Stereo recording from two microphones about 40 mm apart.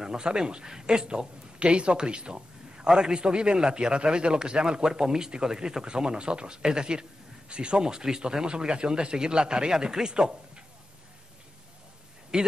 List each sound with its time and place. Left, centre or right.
0.0 s a man's voice: centre
12.3 s a man's voice: centre